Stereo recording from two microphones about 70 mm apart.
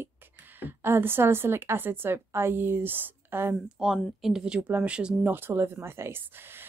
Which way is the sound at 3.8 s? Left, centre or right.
Centre.